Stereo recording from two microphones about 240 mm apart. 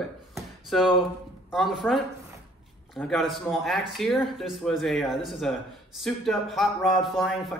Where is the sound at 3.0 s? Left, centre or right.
Centre.